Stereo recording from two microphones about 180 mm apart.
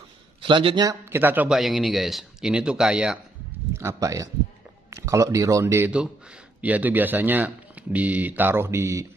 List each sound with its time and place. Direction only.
0.4 s a man's voice: 30° right (ahead or behind); by 3.2 s 5° right (ahead or behind)
3.7 s a man's voice: 15° right (ahead or behind)